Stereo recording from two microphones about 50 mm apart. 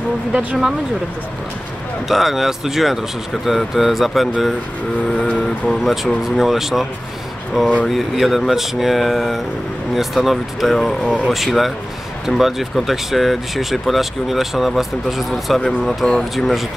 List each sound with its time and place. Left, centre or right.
2.0 s speech: centre
5.7 s speech: centre
16.0 s speech: centre
16.3 s speech: centre